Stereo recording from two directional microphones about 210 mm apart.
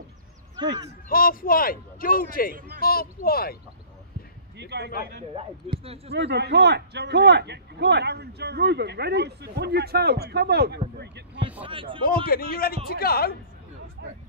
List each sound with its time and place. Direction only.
0.6 s speech: 20° right (ahead or behind)
1.0 s a man's voice: 40° left (ahead or behind)
4.6 s a man's voice: 50° right (ahead or behind)
4.8 s a man's voice: 45° left (ahead or behind)
5.6 s speech: 30° right (ahead or behind)
6.1 s a man's voice: 55° right (ahead or behind)
11.6 s speech: 25° right (ahead or behind)
12.3 s a man's voice: 45° left (ahead or behind)
14.0 s a sound: 50° right (ahead or behind)